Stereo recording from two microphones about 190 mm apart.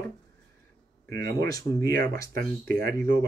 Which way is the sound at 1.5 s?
20° left (ahead or behind).